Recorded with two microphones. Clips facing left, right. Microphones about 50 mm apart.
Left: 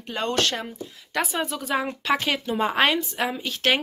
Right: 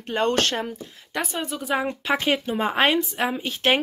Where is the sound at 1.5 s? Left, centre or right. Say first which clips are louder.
Right 3 dB; centre.